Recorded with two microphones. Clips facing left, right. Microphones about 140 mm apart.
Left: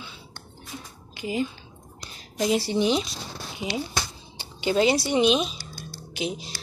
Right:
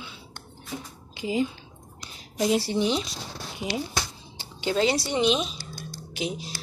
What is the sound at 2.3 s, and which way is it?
Speech, centre (ahead or behind).